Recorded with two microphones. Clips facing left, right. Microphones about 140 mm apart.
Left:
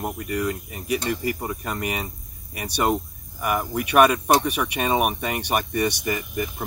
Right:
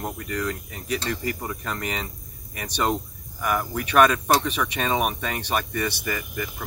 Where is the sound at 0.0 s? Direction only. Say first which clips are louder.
Left 3 dB; 15° left (ahead or behind).